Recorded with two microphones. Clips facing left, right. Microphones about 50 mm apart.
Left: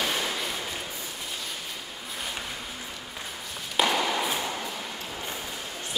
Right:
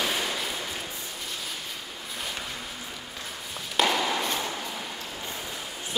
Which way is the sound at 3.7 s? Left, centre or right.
Centre.